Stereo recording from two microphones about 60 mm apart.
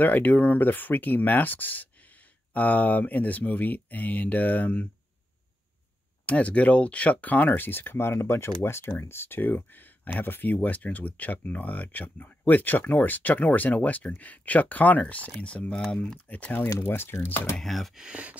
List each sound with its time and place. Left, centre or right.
0.0 s speech: left
6.2 s speech: left
16.8 s speech: left
17.6 s speech: centre
17.9 s speech: centre